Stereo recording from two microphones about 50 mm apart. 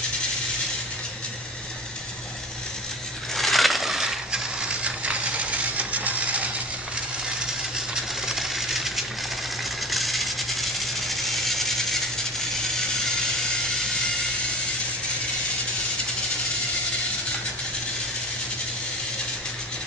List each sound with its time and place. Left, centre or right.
3.3 s crushing: centre; by 6.5 s right
7.9 s sewing machine: centre
9.8 s vehicle: centre